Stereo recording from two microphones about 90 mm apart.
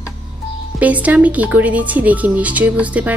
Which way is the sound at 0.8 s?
15° right (ahead or behind).